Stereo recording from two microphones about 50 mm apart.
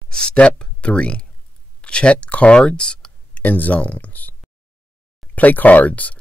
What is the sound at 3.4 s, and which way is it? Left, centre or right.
Speech, left.